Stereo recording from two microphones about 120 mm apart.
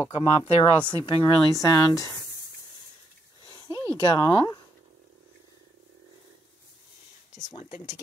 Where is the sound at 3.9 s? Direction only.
35° left (ahead or behind).